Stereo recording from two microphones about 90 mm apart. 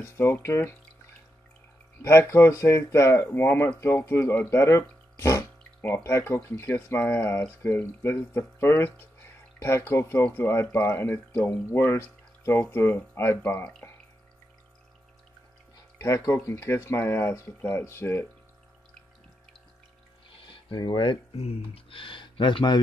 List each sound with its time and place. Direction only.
0.0 s speech: 25° left (ahead or behind)
2.0 s speech: 30° left (ahead or behind)
13.8 s water: 15° left (ahead or behind)
16.0 s speech: 35° left (ahead or behind)
20.4 s speech: 75° left (ahead or behind)
21.7 s speech: 80° left